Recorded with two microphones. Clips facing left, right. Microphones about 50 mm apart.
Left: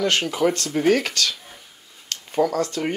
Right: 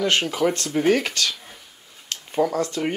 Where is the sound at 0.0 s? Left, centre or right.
Centre.